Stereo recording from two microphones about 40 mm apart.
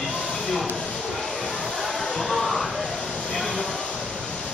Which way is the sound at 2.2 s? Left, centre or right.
Centre.